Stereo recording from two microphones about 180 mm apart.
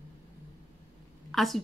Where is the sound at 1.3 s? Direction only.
Centre (ahead or behind).